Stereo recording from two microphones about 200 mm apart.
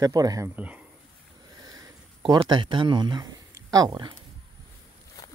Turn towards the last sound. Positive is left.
turn(degrees=-20)  # may be behind; listen again after turning